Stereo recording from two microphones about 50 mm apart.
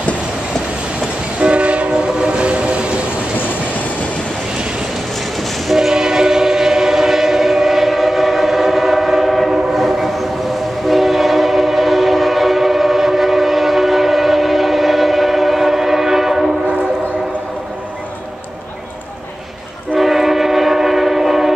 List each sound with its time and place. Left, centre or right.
1.4 s train: right
5.7 s train: centre
20.0 s train: centre